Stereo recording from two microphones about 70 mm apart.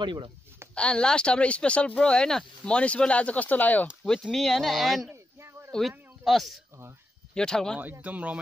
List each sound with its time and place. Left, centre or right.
0.7 s speech: centre
4.0 s a man's voice: centre
7.3 s speech: centre
8.0 s speech: right